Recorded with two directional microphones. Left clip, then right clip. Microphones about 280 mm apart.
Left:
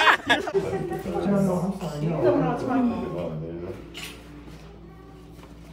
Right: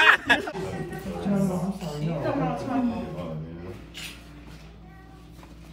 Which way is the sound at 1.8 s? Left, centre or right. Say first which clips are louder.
Left 3 dB; centre.